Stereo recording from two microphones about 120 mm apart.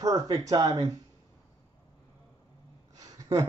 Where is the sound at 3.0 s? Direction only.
35° right (ahead or behind).